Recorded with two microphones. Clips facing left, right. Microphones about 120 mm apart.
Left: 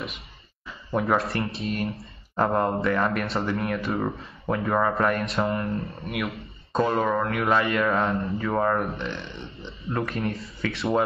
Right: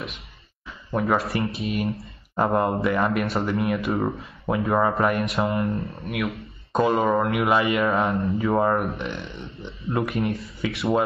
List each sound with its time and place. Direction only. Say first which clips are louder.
0.9 s speech: right 1 dB; centre (ahead or behind)
4.6 s speech: right 2 dB; 10° right (ahead or behind)
5.4 s speech: right 2 dB; 20° right (ahead or behind)
5.7 s speech: right 2 dB; centre (ahead or behind)
6.7 s speech: right 3 dB; 10° right (ahead or behind)
8.2 s speech: right 4 dB; centre (ahead or behind)
8.5 s speech: left 1 dB; 10° right (ahead or behind)
10.1 s speech: right 3 dB; centre (ahead or behind)